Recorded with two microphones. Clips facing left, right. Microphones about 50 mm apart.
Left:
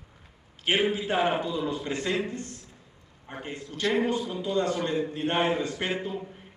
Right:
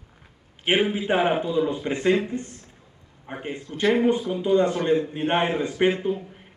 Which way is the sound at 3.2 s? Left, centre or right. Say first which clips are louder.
Right 5 dB; centre.